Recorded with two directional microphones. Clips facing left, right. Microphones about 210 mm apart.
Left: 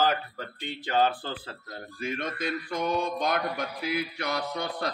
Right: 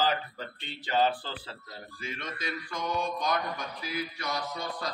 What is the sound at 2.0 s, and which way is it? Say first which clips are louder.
Mantra: left 7 dB; 55° left (ahead or behind).